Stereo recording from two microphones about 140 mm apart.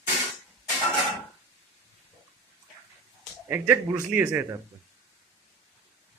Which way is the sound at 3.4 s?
15° right (ahead or behind).